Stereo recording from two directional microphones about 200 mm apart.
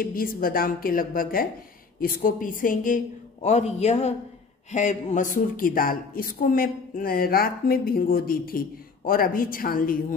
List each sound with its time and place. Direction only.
0.0 s a man's voice: 45° left (ahead or behind)